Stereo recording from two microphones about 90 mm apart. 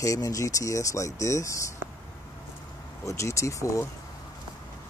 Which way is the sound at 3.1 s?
35° left (ahead or behind).